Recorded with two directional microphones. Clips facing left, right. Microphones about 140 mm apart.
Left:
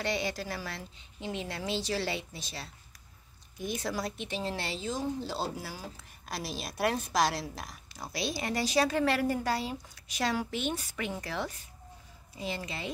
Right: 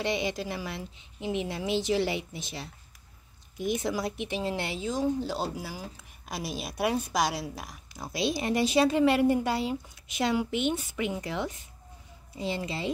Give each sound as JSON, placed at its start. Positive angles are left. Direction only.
{"t": 0.0, "sound": "a woman's voice", "side_deg": -20}